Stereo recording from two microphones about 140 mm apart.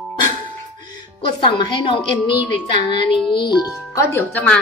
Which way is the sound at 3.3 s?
30° left (ahead or behind).